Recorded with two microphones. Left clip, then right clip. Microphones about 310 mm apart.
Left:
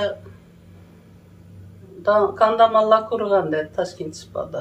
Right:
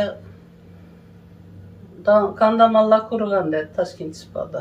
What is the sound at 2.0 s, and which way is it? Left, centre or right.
Speech, left.